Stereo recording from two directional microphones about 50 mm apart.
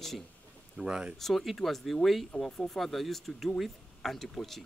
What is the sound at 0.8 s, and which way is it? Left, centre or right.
Speech, right.